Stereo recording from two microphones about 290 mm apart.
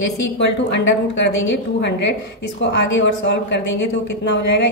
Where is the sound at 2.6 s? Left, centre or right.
Left.